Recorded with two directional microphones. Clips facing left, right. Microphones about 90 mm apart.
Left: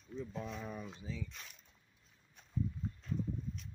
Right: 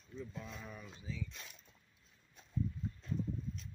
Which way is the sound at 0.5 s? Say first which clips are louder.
Left 5 dB; 25° left (ahead or behind).